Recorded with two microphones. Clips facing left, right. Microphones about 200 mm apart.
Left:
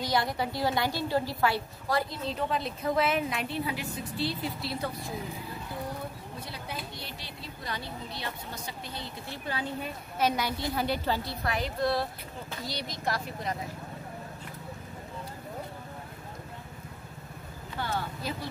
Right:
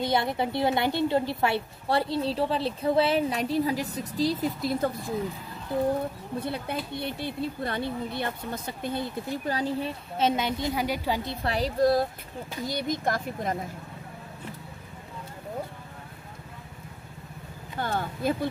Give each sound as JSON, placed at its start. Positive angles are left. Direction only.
{"t": 0.1, "sound": "a woman's voice", "side_deg": -25}
{"t": 6.4, "sound": "speech", "side_deg": -55}
{"t": 11.4, "sound": "a woman's voice", "side_deg": -35}
{"t": 17.7, "sound": "a sound", "side_deg": -50}